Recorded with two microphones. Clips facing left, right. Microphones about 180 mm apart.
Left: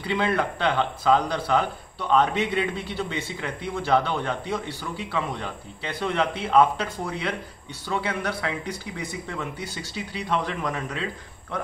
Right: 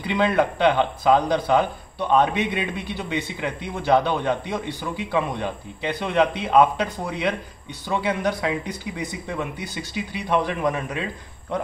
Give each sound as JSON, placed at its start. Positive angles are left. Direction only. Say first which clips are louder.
{"t": 0.0, "sound": "speech", "louder": "right 4 dB", "side_deg": -15}